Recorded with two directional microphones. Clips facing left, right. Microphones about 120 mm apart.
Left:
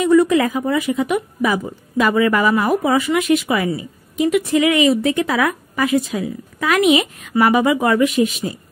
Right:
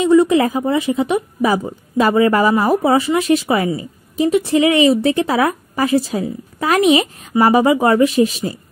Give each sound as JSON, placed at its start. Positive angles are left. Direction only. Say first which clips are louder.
{"t": 0.0, "sound": "a woman's voice", "louder": "right 2 dB", "side_deg": -25}